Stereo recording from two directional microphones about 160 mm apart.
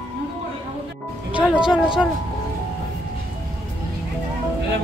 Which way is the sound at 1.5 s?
5° right (ahead or behind).